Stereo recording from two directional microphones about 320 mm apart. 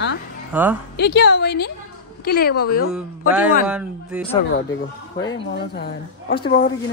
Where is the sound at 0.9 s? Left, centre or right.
Left.